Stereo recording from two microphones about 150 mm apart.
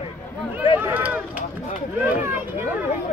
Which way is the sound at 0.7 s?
15° right (ahead or behind).